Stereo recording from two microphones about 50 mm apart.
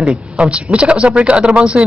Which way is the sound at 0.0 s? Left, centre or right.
Right.